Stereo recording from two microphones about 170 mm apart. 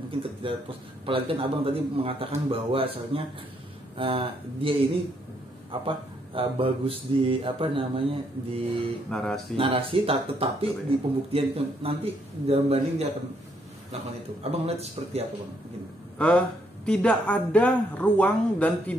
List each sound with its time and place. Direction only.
0.4 s speech: 30° right (ahead or behind)
9.1 s speech: 5° left (ahead or behind)
9.6 s speech: 30° right (ahead or behind)
14.4 s speech: 35° right (ahead or behind)
16.2 s speech: 5° left (ahead or behind)